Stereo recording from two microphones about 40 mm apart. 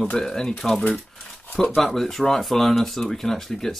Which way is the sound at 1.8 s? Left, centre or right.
Centre.